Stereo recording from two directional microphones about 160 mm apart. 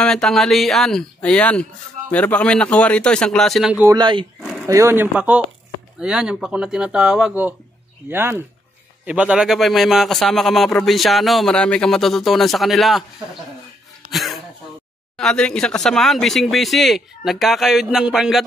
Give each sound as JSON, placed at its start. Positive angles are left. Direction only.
{"t": 0.0, "sound": "a man's voice", "side_deg": 5}
{"t": 3.8, "sound": "speech", "side_deg": -25}
{"t": 4.6, "sound": "a man's voice", "side_deg": -15}
{"t": 14.0, "sound": "throat clearing", "side_deg": 0}
{"t": 15.1, "sound": "a man's voice", "side_deg": 5}